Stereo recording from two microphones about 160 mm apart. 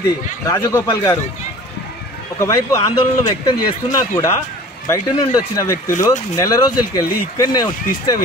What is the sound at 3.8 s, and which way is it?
Speech, 20° left (ahead or behind).